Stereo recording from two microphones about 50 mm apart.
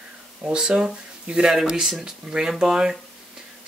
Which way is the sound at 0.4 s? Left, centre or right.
Centre.